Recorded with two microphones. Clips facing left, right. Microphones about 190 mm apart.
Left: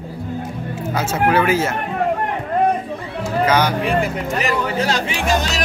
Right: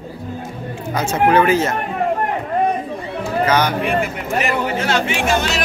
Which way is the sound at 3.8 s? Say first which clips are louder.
Left 1 dB; 35° left (ahead or behind).